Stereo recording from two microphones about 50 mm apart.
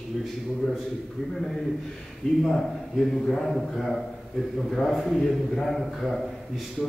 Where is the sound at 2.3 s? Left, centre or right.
Centre.